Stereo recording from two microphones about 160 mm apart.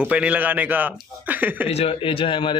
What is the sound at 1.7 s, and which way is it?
Speech, 40° left (ahead or behind).